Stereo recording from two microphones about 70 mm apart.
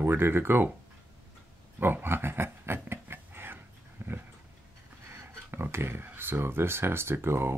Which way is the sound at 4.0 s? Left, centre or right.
Right.